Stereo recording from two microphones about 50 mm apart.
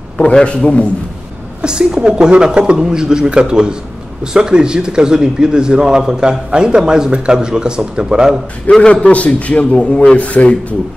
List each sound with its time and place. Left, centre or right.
0.2 s a man's voice: centre
1.6 s a man's voice: centre
8.6 s a man's voice: left